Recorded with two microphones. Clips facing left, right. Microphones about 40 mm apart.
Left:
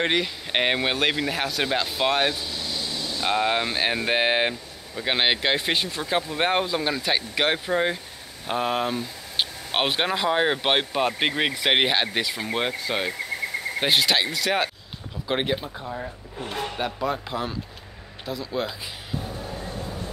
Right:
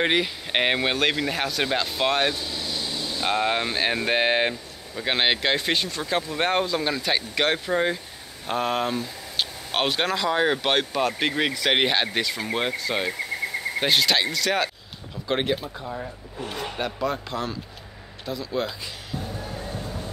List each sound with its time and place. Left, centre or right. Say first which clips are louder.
0.0 s speech: right 1 dB; centre
3.3 s speech: left 1 dB; centre
9.4 s speech: left 1 dB; centre
11.8 s speech: even; centre